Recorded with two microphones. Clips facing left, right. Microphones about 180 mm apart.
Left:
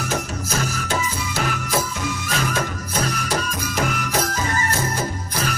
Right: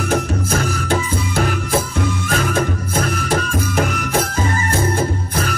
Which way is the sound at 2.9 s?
50° right (ahead or behind).